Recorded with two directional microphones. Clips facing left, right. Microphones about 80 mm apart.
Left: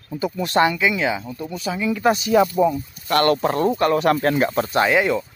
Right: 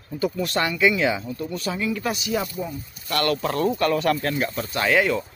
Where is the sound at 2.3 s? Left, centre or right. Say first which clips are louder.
Left 12 dB; left.